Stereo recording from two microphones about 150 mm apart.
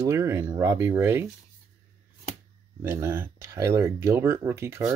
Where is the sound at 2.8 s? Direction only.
15° right (ahead or behind).